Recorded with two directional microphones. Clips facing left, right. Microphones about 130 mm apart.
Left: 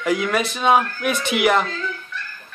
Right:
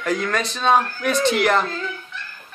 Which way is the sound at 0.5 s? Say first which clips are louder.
Even; 10° left (ahead or behind).